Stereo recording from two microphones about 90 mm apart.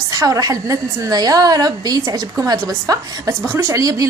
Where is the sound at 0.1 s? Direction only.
40° right (ahead or behind).